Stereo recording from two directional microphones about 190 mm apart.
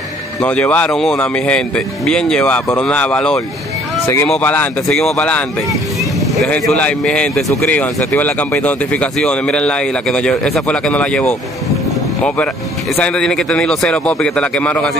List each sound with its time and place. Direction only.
0.4 s speech: 5° left (ahead or behind)
6.4 s speech: 5° left (ahead or behind)
12.9 s speech: 5° left (ahead or behind)